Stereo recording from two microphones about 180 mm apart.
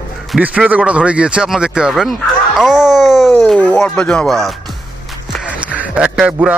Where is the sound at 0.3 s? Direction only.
5° right (ahead or behind).